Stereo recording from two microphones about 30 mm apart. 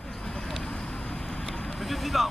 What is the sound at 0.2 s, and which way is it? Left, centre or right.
Vehicle, left.